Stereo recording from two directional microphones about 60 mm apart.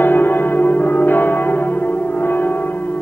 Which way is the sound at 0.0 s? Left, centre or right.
Left.